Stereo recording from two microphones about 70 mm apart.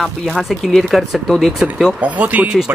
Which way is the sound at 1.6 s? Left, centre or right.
Centre.